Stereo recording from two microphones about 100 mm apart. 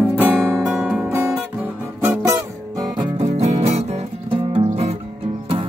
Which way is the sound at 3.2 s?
90° right.